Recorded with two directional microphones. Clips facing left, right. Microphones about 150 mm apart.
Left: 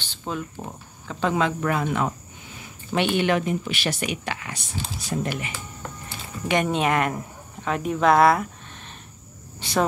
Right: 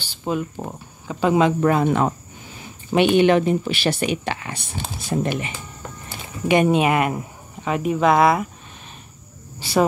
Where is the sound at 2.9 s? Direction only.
15° right (ahead or behind).